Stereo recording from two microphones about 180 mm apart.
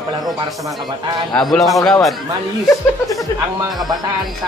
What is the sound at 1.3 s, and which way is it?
Speech, centre (ahead or behind).